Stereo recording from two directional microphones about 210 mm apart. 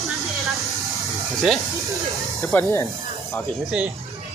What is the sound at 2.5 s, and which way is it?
Speech, 10° left (ahead or behind).